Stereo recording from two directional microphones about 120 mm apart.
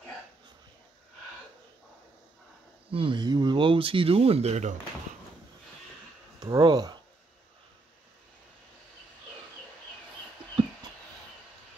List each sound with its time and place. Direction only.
2.9 s speech: 50° right (ahead or behind)
3.2 s speech: 35° right (ahead or behind); by 4.7 s 70° right (ahead or behind)
6.4 s speech: 35° right (ahead or behind)